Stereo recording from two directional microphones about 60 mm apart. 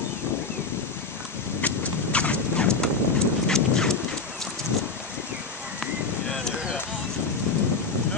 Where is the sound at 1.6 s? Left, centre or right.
Left.